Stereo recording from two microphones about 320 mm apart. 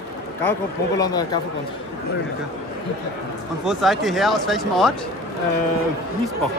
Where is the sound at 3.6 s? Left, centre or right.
Centre.